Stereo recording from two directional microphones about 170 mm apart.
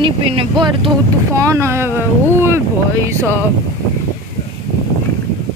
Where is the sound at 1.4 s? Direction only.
20° right (ahead or behind).